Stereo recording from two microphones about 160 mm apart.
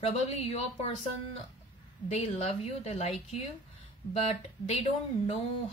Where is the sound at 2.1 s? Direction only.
40° left (ahead or behind).